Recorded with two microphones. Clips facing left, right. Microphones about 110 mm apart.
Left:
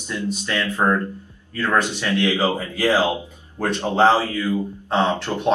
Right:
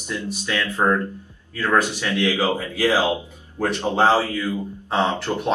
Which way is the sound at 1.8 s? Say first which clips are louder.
Even; 15° right (ahead or behind).